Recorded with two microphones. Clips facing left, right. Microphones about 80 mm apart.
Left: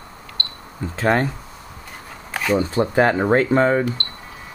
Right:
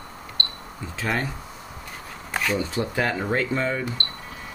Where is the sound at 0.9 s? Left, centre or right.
Left.